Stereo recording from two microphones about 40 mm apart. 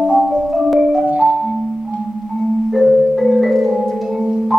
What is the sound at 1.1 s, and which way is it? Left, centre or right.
Marimba, right.